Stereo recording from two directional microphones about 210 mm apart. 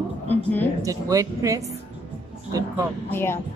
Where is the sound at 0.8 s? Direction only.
15° right (ahead or behind).